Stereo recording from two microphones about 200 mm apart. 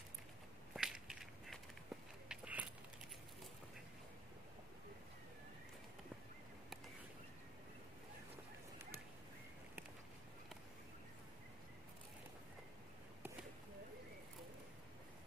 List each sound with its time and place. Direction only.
0.7 s crushing: 5° right (ahead or behind)
2.2 s biting: 5° right (ahead or behind)